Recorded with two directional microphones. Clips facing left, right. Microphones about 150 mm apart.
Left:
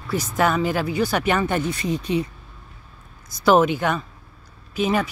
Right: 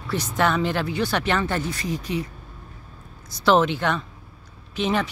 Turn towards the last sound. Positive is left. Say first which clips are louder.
# left 2 dB
turn(degrees=10)  # may be behind; listen again after turning